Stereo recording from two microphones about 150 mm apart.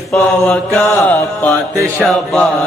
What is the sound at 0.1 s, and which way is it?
Mantra, 10° left (ahead or behind).